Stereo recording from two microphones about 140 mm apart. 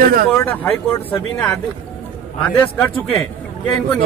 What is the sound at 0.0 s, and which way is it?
Speech, 85° right.